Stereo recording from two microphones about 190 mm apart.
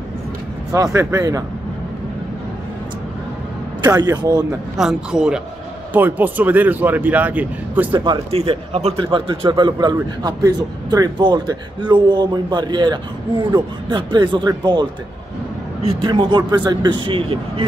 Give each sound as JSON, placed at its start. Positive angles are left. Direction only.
{"t": 0.7, "sound": "speech", "side_deg": -15}
{"t": 3.8, "sound": "speech", "side_deg": -20}
{"t": 4.7, "sound": "a man's voice", "side_deg": -5}
{"t": 7.9, "sound": "speech", "side_deg": -25}